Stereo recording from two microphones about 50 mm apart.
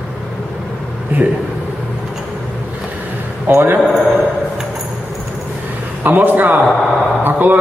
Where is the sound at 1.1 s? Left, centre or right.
Right.